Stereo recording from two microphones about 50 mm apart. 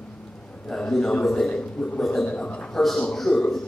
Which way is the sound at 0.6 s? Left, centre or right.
Centre.